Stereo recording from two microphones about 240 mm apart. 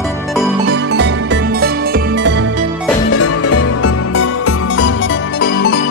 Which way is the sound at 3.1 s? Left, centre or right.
Left.